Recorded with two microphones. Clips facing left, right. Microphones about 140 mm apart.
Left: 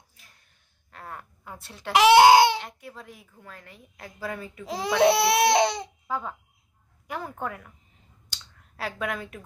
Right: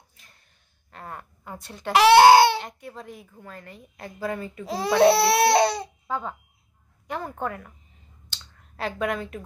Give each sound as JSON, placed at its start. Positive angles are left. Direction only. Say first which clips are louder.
{"t": 0.2, "sound": "a sound", "louder": "right 1 dB", "side_deg": 5}
{"t": 1.9, "sound": "speech", "louder": "right 2 dB", "side_deg": 15}
{"t": 3.0, "sound": "a woman's voice", "louder": "right 5 dB", "side_deg": 0}
{"t": 4.6, "sound": "speech", "louder": "right 3 dB", "side_deg": 15}
{"t": 6.0, "sound": "a woman's voice", "louder": "even", "side_deg": 5}
{"t": 8.3, "sound": "clicking", "louder": "right 1 dB", "side_deg": 5}
{"t": 9.0, "sound": "a woman's voice", "louder": "right 5 dB", "side_deg": 0}